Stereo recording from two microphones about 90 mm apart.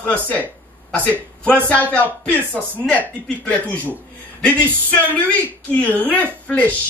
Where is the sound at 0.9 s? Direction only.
15° left (ahead or behind).